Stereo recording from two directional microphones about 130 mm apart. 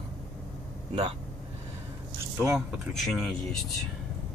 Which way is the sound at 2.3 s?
20° right (ahead or behind).